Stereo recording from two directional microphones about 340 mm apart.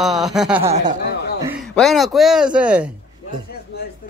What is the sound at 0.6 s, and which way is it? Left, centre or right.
Speech, centre.